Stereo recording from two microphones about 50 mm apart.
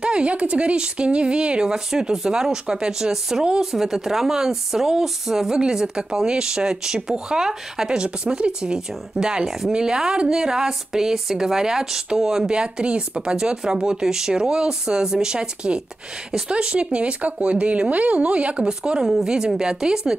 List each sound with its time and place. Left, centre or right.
0.0 s a woman's voice: right